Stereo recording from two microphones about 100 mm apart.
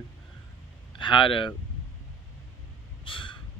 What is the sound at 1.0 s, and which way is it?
Speech, 55° left (ahead or behind).